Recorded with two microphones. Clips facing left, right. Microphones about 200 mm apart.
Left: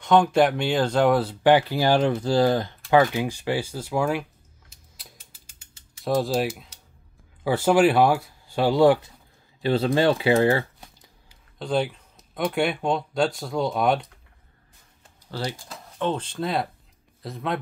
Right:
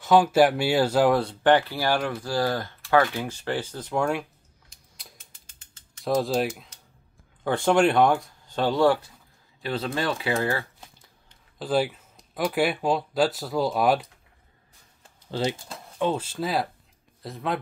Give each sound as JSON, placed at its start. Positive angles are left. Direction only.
{"t": 0.0, "sound": "speech", "side_deg": -5}
{"t": 1.4, "sound": "speech", "side_deg": 10}
{"t": 4.9, "sound": "a sound", "side_deg": 0}
{"t": 6.0, "sound": "speech", "side_deg": 0}
{"t": 9.6, "sound": "speech", "side_deg": 30}
{"t": 11.2, "sound": "speech", "side_deg": -5}
{"t": 15.3, "sound": "speech", "side_deg": -25}
{"t": 16.0, "sound": "speech", "side_deg": -10}